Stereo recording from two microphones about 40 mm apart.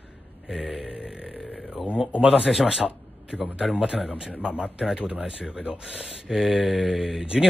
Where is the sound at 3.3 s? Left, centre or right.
Right.